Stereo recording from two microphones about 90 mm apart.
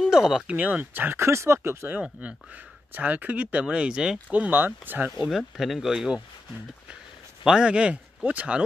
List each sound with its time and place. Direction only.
0.1 s speech: 5° right (ahead or behind); by 2.0 s 25° right (ahead or behind)
2.0 s speech: 10° right (ahead or behind)
5.2 s speech: 5° right (ahead or behind)
7.4 s speech: 10° right (ahead or behind)